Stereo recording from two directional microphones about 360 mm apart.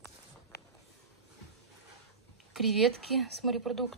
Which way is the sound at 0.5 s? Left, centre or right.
Left.